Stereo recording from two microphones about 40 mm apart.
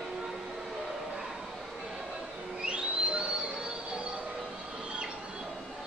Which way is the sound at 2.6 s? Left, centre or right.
Right.